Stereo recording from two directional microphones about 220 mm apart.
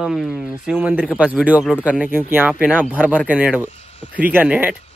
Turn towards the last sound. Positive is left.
turn(degrees=-5)  # may be behind; listen again after turning